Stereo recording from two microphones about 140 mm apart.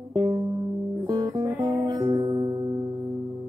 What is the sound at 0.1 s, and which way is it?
Music, 30° right (ahead or behind).